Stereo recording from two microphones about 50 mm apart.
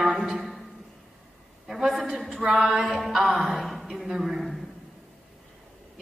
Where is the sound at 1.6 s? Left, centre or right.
Centre.